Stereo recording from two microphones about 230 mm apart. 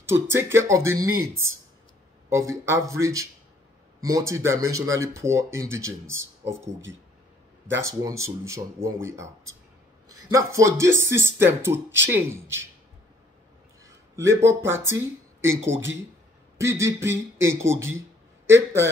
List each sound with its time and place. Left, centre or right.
0.0 s speech: centre
14.1 s speech: centre